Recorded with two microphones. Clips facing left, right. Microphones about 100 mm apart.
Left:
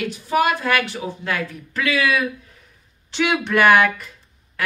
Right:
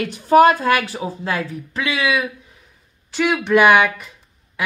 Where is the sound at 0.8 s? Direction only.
30° right (ahead or behind).